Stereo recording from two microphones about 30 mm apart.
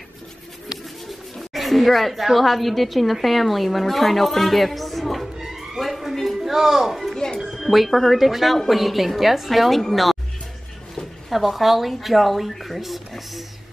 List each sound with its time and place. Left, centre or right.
1.0 s speech: centre
5.4 s a sound: centre
5.8 s a sound: centre
7.2 s speech: left
7.5 s music: centre
7.9 s speech: centre
8.2 s speech: centre
11.2 s speech: centre